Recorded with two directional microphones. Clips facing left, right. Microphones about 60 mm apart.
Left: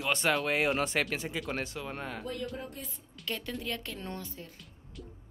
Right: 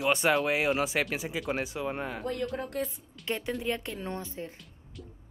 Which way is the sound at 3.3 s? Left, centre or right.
Right.